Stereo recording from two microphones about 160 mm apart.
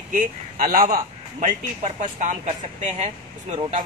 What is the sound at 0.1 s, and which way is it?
A man's voice, 60° right (ahead or behind).